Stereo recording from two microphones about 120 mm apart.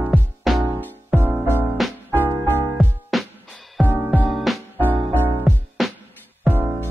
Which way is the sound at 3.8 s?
15° right (ahead or behind).